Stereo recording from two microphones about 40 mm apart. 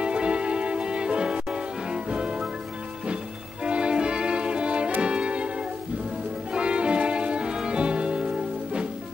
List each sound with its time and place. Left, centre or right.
0.0 s music: right
3.6 s music: right
6.5 s music: right